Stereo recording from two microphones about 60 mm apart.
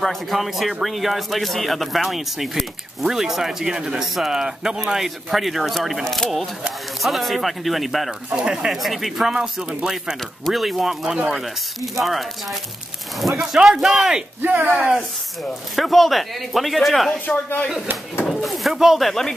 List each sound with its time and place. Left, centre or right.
0.0 s speech: centre
4.9 s speech: centre
8.3 s speech: centre
14.4 s speech: right
14.8 s speech: centre
18.3 s speech: centre